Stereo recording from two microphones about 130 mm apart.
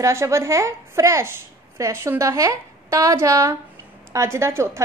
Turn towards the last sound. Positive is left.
turn(degrees=-20)  # may be behind; listen again after turning